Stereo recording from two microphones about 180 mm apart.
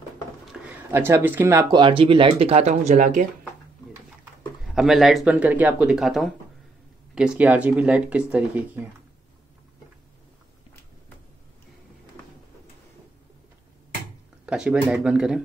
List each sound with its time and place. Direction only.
0.5 s speech: 10° right (ahead or behind); by 3.3 s 45° right (ahead or behind)
4.7 s speech: centre (ahead or behind)
14.4 s speech: 5° right (ahead or behind)